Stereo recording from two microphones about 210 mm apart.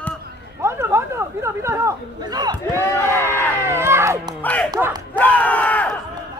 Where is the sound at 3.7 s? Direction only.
10° right (ahead or behind).